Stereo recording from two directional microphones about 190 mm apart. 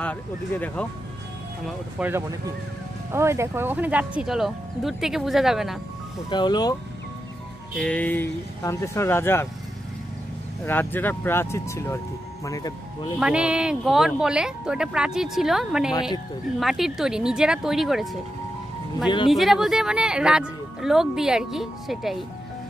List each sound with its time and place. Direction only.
0.0 s speech: 5° left (ahead or behind)
1.7 s speech: 10° right (ahead or behind)
6.3 s speech: 25° left (ahead or behind)
7.7 s speech: 5° left (ahead or behind)
10.6 s speech: 10° left (ahead or behind)
13.2 s speech: 5° right (ahead or behind)
15.9 s speech: 20° left (ahead or behind)
16.5 s speech: centre (ahead or behind)
19.0 s speech: 25° left (ahead or behind)
19.3 s speech: centre (ahead or behind)